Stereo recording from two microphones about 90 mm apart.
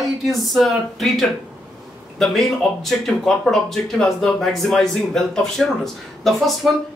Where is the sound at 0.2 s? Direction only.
Centre (ahead or behind).